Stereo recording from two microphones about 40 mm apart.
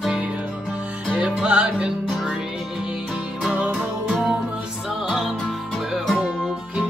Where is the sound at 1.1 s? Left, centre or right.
Right.